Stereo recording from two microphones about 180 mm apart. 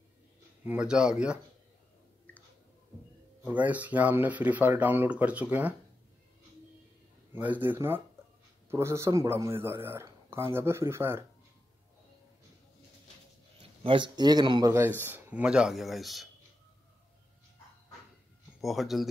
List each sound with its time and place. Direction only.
0.7 s speech: 5° right (ahead or behind)
3.4 s speech: 10° right (ahead or behind)
7.3 s speech: 10° right (ahead or behind)
13.6 s a man's voice: 30° right (ahead or behind)
15.0 s speech: 10° right (ahead or behind)
18.6 s speech: centre (ahead or behind)